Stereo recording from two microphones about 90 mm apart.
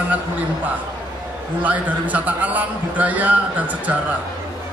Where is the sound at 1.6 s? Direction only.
15° right (ahead or behind).